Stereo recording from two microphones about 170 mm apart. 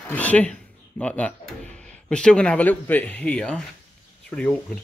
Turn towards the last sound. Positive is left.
turn(degrees=5)  # may be behind; listen again after turning